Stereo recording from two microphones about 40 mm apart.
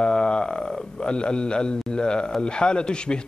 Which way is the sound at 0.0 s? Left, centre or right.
Left.